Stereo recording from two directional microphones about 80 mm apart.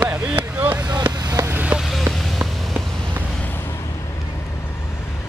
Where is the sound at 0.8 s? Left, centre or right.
Right.